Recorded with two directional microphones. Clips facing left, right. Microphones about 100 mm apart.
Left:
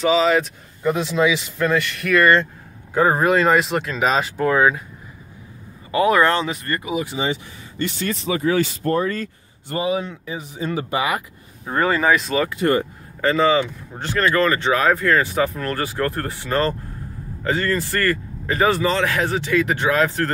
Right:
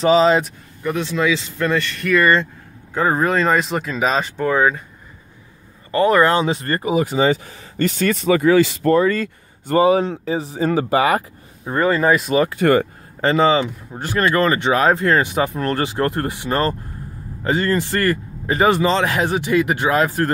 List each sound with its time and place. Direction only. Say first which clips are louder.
0.0 s speech: right 3 dB; 35° right (ahead or behind)
0.8 s speech: left 1 dB; 15° left (ahead or behind)
1.6 s speech: even; 5° left (ahead or behind)
5.9 s speech: right 2 dB; 5° left (ahead or behind)
6.4 s speech: right 5 dB; 30° right (ahead or behind); by 9.3 s 90° right
9.7 s speech: right 8 dB; 45° right (ahead or behind)
10.1 s speech: right 8 dB; 35° right (ahead or behind)
11.6 s speech: right 2 dB; 5° right (ahead or behind)
13.2 s speech: right 2 dB; 20° right (ahead or behind)